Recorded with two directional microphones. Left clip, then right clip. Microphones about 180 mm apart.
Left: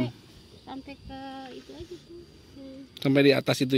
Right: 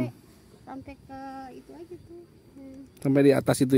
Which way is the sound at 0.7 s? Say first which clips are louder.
Even; 15° right (ahead or behind).